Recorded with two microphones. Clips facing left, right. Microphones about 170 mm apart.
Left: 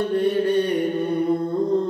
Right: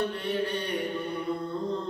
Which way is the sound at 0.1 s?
50° left (ahead or behind).